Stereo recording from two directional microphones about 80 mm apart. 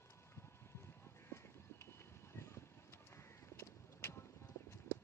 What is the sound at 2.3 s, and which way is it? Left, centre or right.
Vehicle, left.